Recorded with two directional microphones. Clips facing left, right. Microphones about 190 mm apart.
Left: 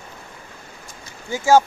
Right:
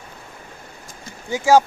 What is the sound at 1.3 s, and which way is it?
Speech, 10° right (ahead or behind).